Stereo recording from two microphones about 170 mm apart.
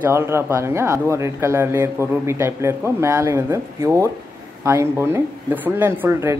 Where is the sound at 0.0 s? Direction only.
15° right (ahead or behind).